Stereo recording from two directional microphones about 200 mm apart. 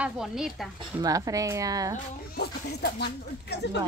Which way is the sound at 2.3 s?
50° left (ahead or behind).